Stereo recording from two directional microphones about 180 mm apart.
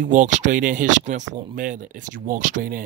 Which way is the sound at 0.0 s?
45° right (ahead or behind).